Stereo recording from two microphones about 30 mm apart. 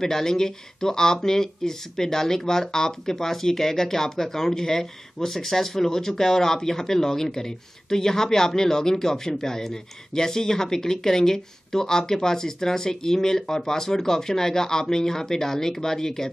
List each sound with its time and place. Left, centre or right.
0.0 s speech: centre